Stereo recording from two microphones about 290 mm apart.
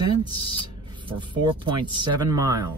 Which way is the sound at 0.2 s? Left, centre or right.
Centre.